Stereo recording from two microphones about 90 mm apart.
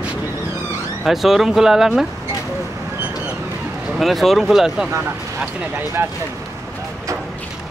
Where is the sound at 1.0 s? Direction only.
Centre (ahead or behind).